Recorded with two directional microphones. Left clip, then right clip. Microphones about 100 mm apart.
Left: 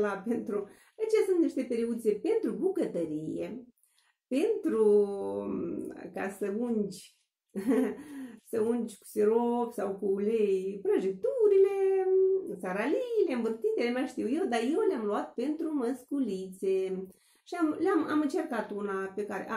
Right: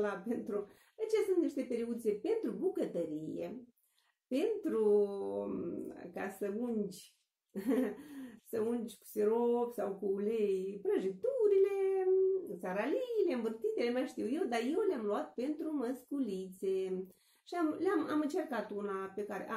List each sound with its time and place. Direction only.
0.0 s speech: 15° right (ahead or behind)